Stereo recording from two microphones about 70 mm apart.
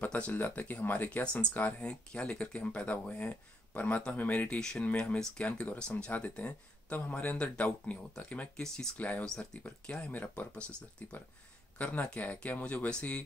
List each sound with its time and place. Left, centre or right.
0.0 s speech: centre
9.2 s speech: centre